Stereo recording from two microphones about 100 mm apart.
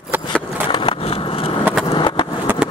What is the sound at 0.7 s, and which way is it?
Skateboard, 60° left (ahead or behind).